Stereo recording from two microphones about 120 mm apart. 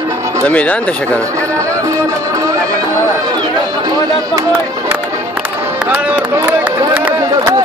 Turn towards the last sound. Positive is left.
turn(degrees=-15)  # may be behind; listen again after turning